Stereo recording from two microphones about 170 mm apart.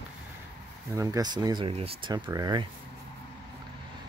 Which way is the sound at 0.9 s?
20° right (ahead or behind).